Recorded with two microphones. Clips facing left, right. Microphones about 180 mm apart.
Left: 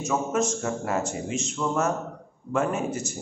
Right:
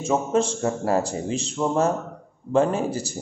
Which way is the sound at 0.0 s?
30° right (ahead or behind).